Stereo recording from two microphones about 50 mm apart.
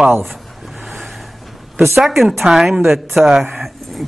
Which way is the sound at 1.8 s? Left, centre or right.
Centre.